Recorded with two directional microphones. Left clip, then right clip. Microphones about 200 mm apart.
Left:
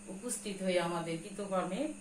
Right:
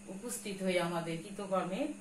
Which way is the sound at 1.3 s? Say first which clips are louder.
Right 1 dB; 20° left (ahead or behind).